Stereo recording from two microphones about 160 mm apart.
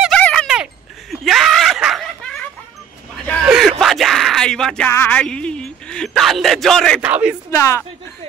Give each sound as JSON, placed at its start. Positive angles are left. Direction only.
{"t": 0.1, "sound": "a sound", "side_deg": 5}
{"t": 3.4, "sound": "a sound", "side_deg": -5}
{"t": 3.8, "sound": "music", "side_deg": 0}
{"t": 4.9, "sound": "speech", "side_deg": 10}
{"t": 7.0, "sound": "speech", "side_deg": -10}
{"t": 7.5, "sound": "speech", "side_deg": 15}